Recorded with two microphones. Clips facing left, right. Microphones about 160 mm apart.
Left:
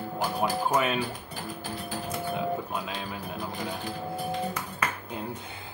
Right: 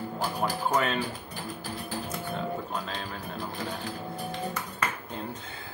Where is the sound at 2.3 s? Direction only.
10° left (ahead or behind).